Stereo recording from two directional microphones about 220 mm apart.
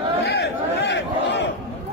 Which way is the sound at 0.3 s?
50° left (ahead or behind).